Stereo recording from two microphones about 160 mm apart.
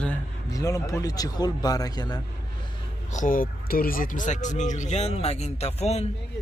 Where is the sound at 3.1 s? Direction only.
55° left (ahead or behind).